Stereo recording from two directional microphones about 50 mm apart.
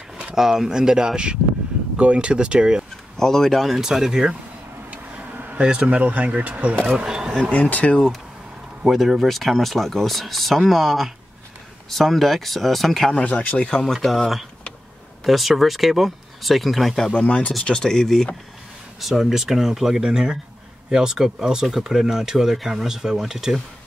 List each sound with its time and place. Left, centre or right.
0.4 s speech: centre
3.2 s speech: centre
3.8 s speech: centre
4.9 s a sound: right
5.6 s speech: right
6.9 s speech: centre
7.8 s speech: centre
8.8 s speech: centre
13.1 s speech: left
13.9 s speech: centre
17.1 s speech: left
17.6 s speech: centre
18.9 s speech: centre